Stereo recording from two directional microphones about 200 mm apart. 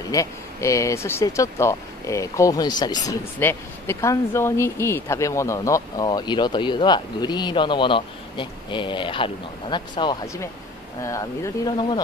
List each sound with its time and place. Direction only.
0.1 s speech: 15° left (ahead or behind)